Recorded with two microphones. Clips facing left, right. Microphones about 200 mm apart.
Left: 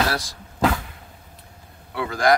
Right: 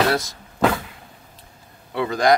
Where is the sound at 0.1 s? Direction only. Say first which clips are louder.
Right 6 dB; 20° right (ahead or behind).